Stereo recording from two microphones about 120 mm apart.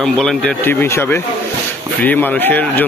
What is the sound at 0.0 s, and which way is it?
Speech, 5° left (ahead or behind).